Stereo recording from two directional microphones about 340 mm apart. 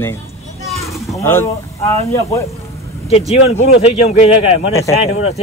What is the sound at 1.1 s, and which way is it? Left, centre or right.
Speech, centre.